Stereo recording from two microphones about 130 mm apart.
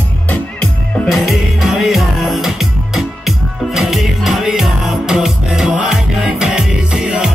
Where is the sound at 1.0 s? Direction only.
5° right (ahead or behind).